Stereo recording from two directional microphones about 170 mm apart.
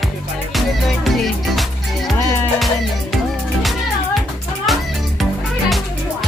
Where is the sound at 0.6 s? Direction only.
Centre (ahead or behind).